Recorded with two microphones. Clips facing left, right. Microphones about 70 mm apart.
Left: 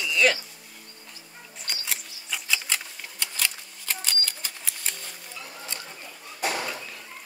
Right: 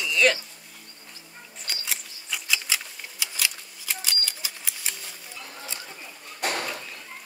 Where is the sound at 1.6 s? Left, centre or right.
Centre.